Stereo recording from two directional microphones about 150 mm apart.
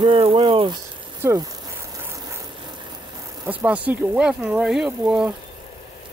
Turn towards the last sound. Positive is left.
turn(degrees=-5)  # may be behind; listen again after turning